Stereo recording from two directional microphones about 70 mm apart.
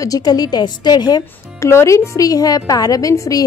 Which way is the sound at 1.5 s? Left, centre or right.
Left.